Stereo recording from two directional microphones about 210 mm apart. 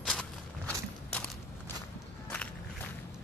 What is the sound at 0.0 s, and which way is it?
Walk, 5° left (ahead or behind).